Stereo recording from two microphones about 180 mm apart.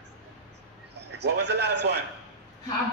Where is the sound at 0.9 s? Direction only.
70° right (ahead or behind).